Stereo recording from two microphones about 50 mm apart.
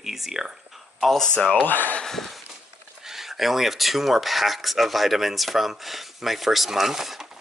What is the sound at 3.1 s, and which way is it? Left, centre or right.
Speech, centre.